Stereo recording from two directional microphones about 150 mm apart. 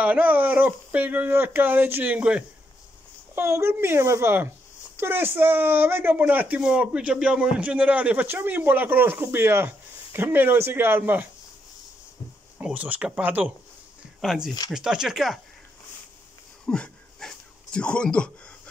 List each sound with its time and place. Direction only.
0.0 s speech: 10° right (ahead or behind)
12.5 s speech: 10° right (ahead or behind)
16.6 s dog: 5° left (ahead or behind)
17.7 s speech: 5° left (ahead or behind)